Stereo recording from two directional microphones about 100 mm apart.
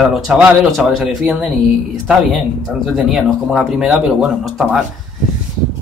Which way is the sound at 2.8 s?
Centre (ahead or behind).